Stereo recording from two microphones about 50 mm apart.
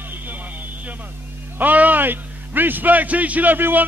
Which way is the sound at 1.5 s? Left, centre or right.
Right.